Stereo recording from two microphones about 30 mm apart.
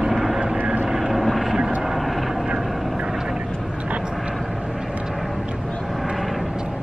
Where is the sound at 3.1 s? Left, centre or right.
Centre.